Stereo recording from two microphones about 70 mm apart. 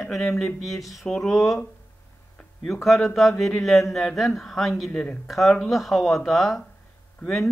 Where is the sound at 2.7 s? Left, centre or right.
Centre.